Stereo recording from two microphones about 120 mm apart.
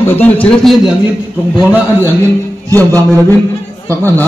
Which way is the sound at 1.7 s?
15° right (ahead or behind).